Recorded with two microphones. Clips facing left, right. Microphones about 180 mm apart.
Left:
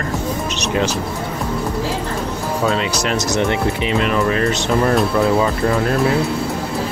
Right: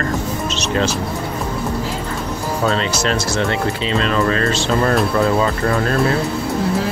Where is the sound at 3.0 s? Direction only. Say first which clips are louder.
Left 1 dB; 20° left (ahead or behind).